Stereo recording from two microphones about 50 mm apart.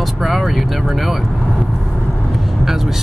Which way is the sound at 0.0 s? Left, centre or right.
Centre.